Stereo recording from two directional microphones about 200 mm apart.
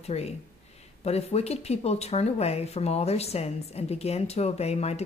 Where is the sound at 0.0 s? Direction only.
30° left (ahead or behind).